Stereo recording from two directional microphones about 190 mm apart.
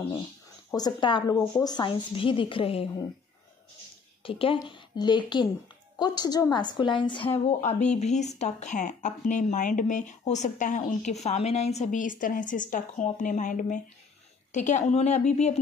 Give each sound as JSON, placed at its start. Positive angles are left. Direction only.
{"t": 0.7, "sound": "a woman's voice", "side_deg": 25}
{"t": 4.2, "sound": "a woman's voice", "side_deg": 30}